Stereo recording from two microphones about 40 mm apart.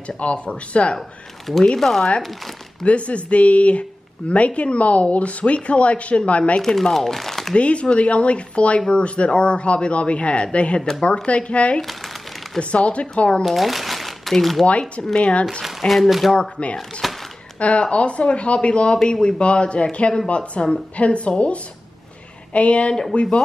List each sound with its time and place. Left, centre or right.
0.2 s a woman's voice: left
1.8 s speech: centre
2.8 s a woman's voice: left
6.6 s speech: centre
7.5 s a woman's voice: left
11.8 s crumpling: centre
12.5 s a woman's voice: left
13.4 s speech: centre
14.7 s a woman's voice: left
15.9 s speech: centre
16.3 s a man's voice: left
17.0 s a sound: centre
17.6 s a man's voice: left